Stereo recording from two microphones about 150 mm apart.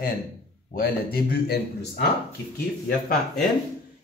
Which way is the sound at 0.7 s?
85° left.